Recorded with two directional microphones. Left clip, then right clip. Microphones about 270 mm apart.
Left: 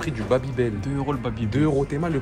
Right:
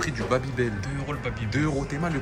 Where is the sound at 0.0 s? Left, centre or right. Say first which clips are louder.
Left 3 dB; left.